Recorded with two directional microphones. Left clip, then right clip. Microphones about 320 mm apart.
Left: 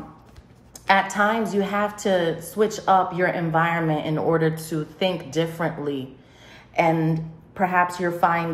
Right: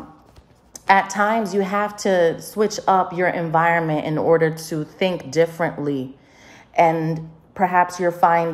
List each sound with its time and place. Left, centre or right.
0.8 s a woman's voice: right